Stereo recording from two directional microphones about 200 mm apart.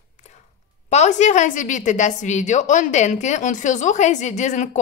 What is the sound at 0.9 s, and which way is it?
A woman's voice, 35° left (ahead or behind).